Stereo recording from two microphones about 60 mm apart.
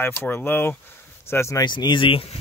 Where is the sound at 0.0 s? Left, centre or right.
Left.